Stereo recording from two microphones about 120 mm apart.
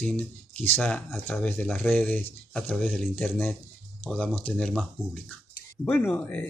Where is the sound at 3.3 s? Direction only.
15° left (ahead or behind).